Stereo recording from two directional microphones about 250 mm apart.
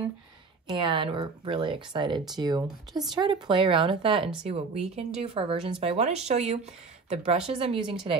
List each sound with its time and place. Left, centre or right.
0.7 s speech: centre